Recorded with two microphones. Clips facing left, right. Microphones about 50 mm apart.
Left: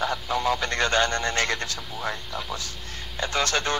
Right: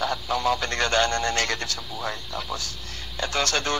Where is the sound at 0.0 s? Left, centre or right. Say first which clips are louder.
Right 1 dB; left.